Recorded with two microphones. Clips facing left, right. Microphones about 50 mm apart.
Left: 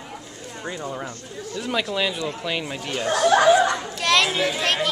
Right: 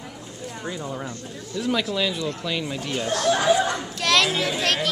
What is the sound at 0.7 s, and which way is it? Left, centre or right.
A woman's voice, centre.